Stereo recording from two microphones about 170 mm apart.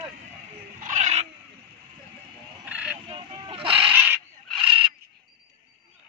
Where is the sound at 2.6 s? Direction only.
5° right (ahead or behind).